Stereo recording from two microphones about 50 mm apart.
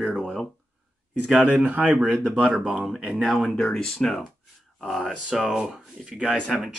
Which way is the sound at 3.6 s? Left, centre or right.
Centre.